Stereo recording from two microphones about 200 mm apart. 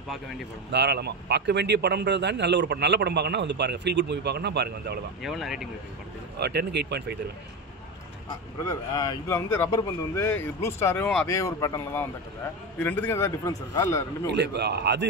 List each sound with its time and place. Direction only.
0.7 s a man's voice: 55° right (ahead or behind)
5.2 s speech: centre (ahead or behind)
6.3 s a man's voice: 55° right (ahead or behind)
8.6 s speech: 20° left (ahead or behind)
14.3 s a man's voice: 60° right (ahead or behind)